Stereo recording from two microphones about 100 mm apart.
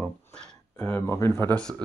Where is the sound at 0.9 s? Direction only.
20° left (ahead or behind).